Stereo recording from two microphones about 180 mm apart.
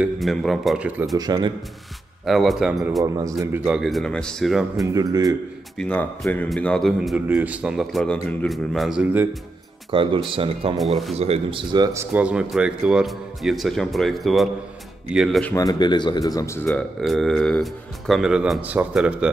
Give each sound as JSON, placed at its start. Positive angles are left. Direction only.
{"t": 0.0, "sound": "a man's voice", "side_deg": 0}
{"t": 1.1, "sound": "speech", "side_deg": -20}
{"t": 2.2, "sound": "a man's voice", "side_deg": 0}
{"t": 3.0, "sound": "speech", "side_deg": -20}
{"t": 3.6, "sound": "a man's voice", "side_deg": 0}
{"t": 4.9, "sound": "speech", "side_deg": -20}
{"t": 5.8, "sound": "a man's voice", "side_deg": 5}
{"t": 9.8, "sound": "speech", "side_deg": -30}
{"t": 10.8, "sound": "a man's voice", "side_deg": 0}
{"t": 11.1, "sound": "a man's voice", "side_deg": -35}
{"t": 15.5, "sound": "speech", "side_deg": 20}
{"t": 17.0, "sound": "a man's voice", "side_deg": 0}